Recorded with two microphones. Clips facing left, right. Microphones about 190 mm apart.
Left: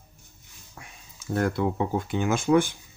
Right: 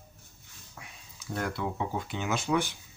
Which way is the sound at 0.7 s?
50° left (ahead or behind).